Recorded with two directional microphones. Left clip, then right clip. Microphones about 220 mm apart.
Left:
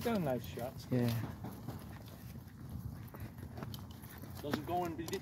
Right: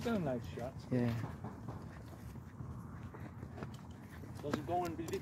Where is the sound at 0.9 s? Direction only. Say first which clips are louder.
Left 1 dB; 15° left (ahead or behind).